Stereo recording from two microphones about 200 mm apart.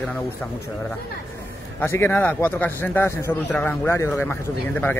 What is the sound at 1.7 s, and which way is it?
Speech, 10° left (ahead or behind).